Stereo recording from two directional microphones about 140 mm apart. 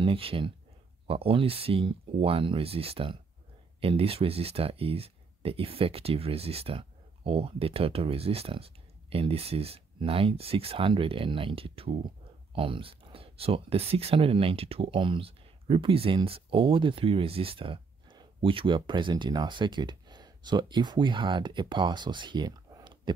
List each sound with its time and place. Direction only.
0.0 s speech: 40° right (ahead or behind)